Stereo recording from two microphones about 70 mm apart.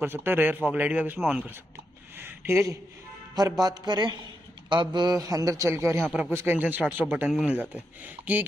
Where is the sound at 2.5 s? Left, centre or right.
Right.